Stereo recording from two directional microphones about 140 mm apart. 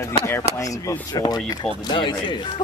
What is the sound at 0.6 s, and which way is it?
A man's voice, 25° left (ahead or behind).